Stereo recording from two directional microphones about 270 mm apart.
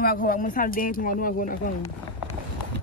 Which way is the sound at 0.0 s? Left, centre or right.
Left.